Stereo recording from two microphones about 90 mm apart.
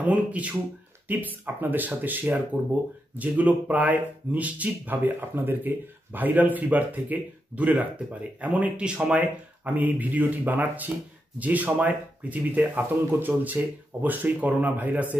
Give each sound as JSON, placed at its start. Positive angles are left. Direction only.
{"t": 0.0, "sound": "speech", "side_deg": -15}